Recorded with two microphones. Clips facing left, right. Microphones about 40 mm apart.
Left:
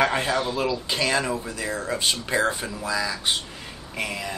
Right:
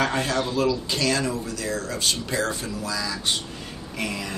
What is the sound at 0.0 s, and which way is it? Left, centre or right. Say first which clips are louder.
Speech: left 1 dB; centre.